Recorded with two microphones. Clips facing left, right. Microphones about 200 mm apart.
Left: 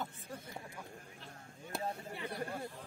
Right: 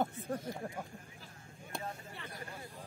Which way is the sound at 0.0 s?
55° right (ahead or behind).